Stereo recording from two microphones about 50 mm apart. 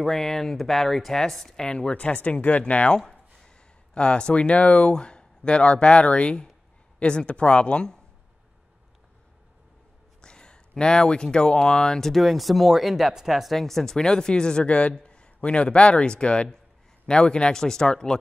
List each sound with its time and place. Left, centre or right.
0.0 s speech: centre
10.2 s speech: centre
12.1 s speech: centre
13.6 s speech: centre